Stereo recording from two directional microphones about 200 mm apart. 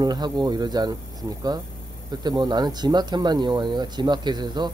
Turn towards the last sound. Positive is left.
turn(degrees=-20)  # may be behind; listen again after turning